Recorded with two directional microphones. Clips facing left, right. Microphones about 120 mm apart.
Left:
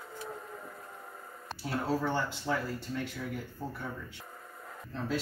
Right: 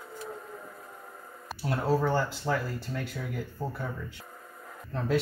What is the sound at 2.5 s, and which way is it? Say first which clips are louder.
Speech: right 2 dB; 45° right (ahead or behind).